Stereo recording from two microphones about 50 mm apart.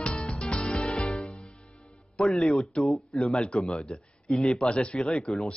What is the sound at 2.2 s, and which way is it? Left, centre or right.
Speech, centre.